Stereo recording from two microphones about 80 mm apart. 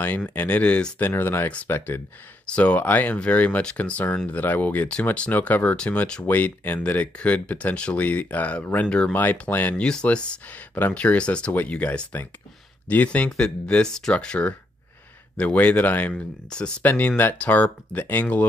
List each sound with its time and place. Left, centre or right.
0.3 s speech: left
0.9 s speech: left
2.4 s speech: centre
9.8 s speech: centre
16.4 s speech: centre